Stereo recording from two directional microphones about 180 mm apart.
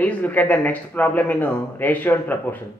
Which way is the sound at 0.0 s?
10° left (ahead or behind).